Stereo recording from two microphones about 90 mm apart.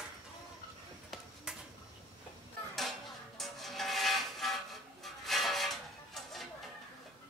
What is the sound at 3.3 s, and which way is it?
Music, centre (ahead or behind).